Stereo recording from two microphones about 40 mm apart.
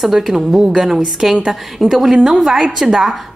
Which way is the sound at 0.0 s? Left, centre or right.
Centre.